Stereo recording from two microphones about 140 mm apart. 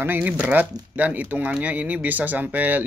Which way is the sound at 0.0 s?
10° right (ahead or behind).